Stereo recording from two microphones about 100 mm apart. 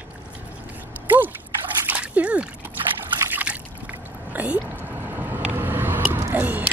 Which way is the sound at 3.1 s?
25° right (ahead or behind).